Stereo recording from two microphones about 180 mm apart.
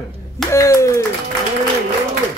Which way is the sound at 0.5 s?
15° left (ahead or behind).